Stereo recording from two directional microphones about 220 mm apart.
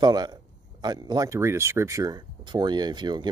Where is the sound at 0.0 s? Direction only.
20° right (ahead or behind).